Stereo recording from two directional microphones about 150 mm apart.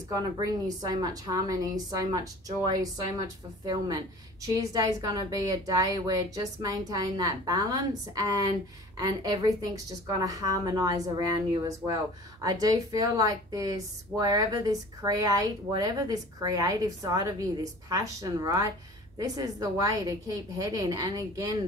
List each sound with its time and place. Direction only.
0.1 s speech: 25° right (ahead or behind)